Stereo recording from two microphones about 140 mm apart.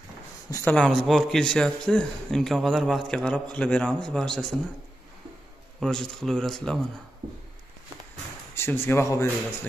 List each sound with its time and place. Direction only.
0.7 s a man's voice: 5° left (ahead or behind)
5.8 s a man's voice: 5° left (ahead or behind)
8.5 s speech: 15° left (ahead or behind)